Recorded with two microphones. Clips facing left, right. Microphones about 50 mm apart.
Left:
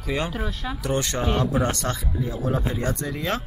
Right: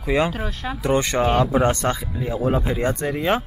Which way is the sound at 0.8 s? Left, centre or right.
Right.